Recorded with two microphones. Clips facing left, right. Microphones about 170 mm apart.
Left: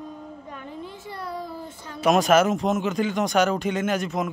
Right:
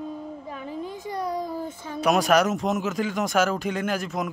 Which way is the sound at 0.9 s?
15° right (ahead or behind).